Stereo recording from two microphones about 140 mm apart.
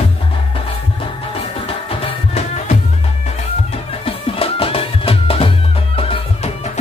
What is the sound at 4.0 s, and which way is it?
Music, 45° left (ahead or behind).